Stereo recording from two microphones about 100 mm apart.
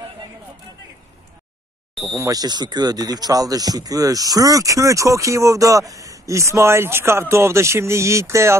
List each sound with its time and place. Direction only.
2.1 s speech: 35° right (ahead or behind)